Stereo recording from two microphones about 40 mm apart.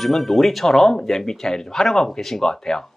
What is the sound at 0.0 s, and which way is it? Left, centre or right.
Speech, centre.